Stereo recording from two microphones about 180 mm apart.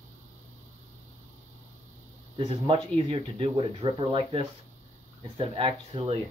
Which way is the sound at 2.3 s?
30° right (ahead or behind).